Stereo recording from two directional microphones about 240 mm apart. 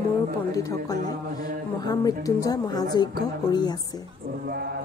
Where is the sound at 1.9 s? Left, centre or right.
Centre.